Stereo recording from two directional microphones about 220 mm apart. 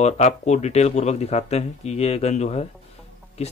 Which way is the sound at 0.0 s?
30° left (ahead or behind).